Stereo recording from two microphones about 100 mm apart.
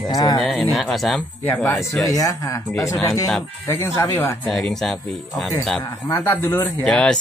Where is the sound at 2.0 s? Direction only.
40° left (ahead or behind).